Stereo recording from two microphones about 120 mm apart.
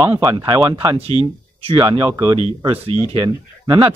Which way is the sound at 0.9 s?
55° right (ahead or behind).